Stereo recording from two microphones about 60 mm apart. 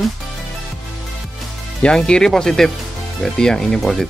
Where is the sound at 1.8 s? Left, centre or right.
Centre.